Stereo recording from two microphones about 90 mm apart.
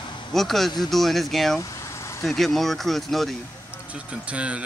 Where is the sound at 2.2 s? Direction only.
5° left (ahead or behind).